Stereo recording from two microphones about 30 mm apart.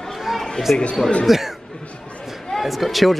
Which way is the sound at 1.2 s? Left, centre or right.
Centre.